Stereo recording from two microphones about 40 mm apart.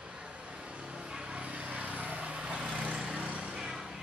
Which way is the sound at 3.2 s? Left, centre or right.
Right.